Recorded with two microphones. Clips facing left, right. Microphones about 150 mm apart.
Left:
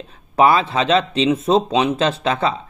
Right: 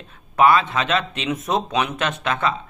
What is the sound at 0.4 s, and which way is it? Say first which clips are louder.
Speech: left 2 dB; 35° left (ahead or behind).